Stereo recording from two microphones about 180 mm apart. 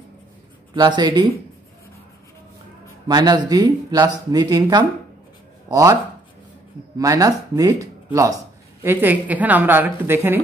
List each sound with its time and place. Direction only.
0.7 s speech: 25° right (ahead or behind)
3.1 s speech: 20° right (ahead or behind)
7.0 s a woman's voice: 20° right (ahead or behind)